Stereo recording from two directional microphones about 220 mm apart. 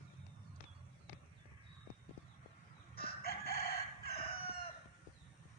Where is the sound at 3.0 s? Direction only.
45° left (ahead or behind).